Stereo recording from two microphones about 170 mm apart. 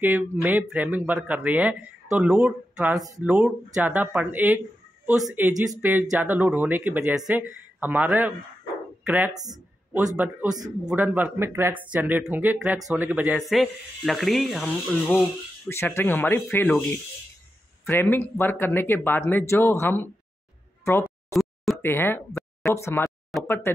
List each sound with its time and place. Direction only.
0.0 s speech: 10° right (ahead or behind)
5.7 s speech: 10° right (ahead or behind)
9.3 s speech: 20° right (ahead or behind)
10.1 s speech: 10° right (ahead or behind); by 20.1 s 15° left (ahead or behind)
21.0 s a sound: centre (ahead or behind)
21.8 s speech: 15° left (ahead or behind)